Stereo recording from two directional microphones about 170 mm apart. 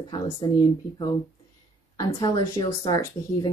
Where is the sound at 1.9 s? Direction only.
20° left (ahead or behind).